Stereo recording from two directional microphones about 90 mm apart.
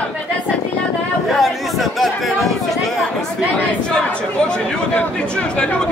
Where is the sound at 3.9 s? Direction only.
10° left (ahead or behind).